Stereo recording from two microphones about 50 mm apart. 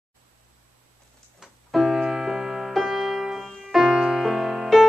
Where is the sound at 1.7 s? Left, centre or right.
Centre.